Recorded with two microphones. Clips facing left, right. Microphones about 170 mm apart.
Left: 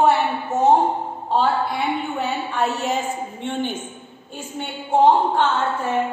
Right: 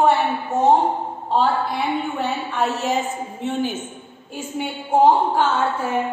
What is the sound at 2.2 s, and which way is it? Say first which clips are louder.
A woman's voice: even; centre (ahead or behind).